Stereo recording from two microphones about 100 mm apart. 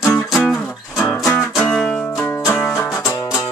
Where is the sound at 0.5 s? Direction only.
5° left (ahead or behind).